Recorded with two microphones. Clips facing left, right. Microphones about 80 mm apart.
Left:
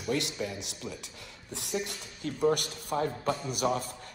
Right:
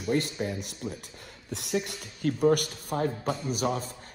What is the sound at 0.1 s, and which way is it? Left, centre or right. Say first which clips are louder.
Speech: right 3 dB; right.